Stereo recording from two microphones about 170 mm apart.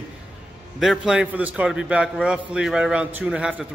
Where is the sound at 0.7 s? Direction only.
5° right (ahead or behind).